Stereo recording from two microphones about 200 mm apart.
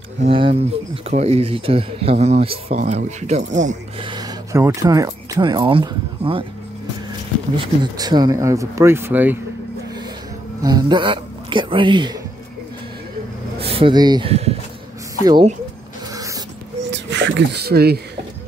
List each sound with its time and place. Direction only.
0.2 s speech: 25° right (ahead or behind)
4.0 s speech: 20° right (ahead or behind)
7.5 s speech: 20° right (ahead or behind)
10.6 s speech: 20° right (ahead or behind)
13.6 s speech: 30° right (ahead or behind)
16.9 s speech: 60° right (ahead or behind)